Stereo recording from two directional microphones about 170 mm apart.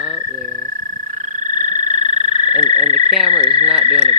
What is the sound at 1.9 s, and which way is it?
Frog, 45° right (ahead or behind).